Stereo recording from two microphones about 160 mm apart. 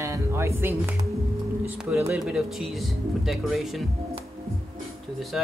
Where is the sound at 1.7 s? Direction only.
15° right (ahead or behind).